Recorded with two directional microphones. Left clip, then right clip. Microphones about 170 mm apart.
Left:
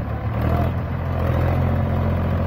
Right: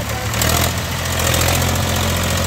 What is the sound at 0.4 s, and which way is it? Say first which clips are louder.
Vehicle: right 7 dB; 15° right (ahead or behind).